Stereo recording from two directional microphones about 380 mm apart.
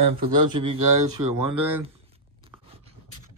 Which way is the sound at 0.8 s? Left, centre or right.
Right.